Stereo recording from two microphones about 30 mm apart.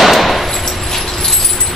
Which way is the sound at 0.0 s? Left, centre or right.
Centre.